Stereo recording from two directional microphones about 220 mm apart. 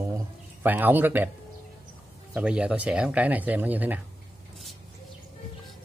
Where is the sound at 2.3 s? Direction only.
5° right (ahead or behind).